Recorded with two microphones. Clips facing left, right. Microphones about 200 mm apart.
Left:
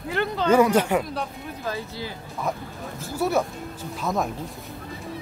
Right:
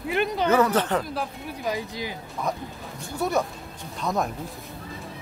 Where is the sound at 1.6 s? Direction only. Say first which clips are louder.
Right 2 dB; 15° right (ahead or behind).